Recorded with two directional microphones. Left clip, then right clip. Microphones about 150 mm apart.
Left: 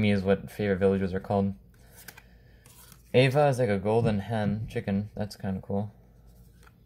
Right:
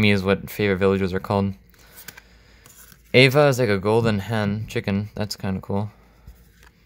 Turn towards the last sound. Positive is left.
turn(degrees=-55)  # may be behind; listen again after turning